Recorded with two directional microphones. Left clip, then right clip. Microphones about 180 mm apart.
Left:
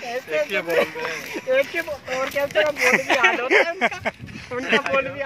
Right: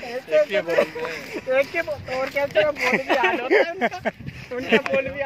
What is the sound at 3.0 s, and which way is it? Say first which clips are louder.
Speech: left 2 dB; 35° right (ahead or behind).